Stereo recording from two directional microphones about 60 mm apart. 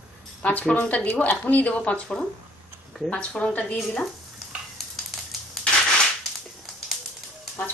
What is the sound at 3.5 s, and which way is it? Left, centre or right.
Speech, left.